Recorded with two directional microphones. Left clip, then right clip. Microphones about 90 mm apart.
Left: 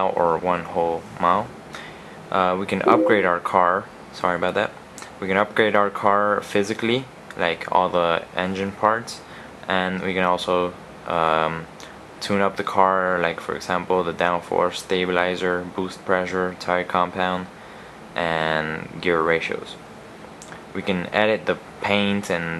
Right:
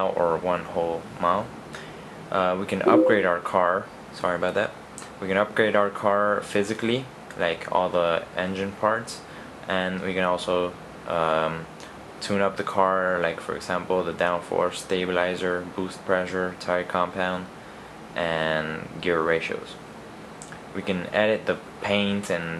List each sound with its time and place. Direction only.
0.0 s speech: 35° left (ahead or behind)
20.7 s speech: 30° left (ahead or behind)